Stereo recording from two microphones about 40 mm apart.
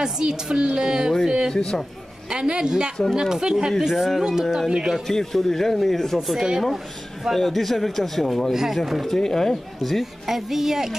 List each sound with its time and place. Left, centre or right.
0.0 s speech: centre
1.5 s speech: centre
2.2 s a woman's voice: right
3.9 s speech: centre
4.2 s speech: centre
5.0 s speech: centre
9.0 s speech: centre
9.8 s speech: centre